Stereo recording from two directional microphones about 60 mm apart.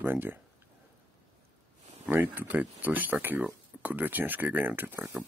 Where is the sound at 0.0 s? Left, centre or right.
Right.